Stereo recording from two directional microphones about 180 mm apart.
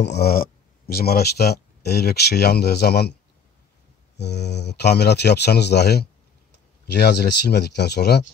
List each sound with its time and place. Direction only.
0.0 s speech: 65° left (ahead or behind)
4.2 s speech: 70° left (ahead or behind)